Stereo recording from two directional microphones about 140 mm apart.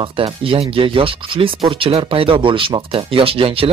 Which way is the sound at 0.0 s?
40° right (ahead or behind).